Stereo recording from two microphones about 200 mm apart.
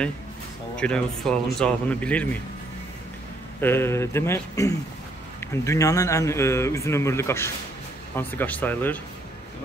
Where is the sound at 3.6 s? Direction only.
10° left (ahead or behind).